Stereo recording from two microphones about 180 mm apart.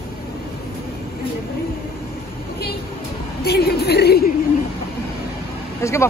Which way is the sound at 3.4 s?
60° left (ahead or behind).